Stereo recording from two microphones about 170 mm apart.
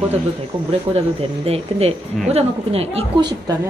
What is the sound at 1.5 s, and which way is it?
Speech, 35° right (ahead or behind).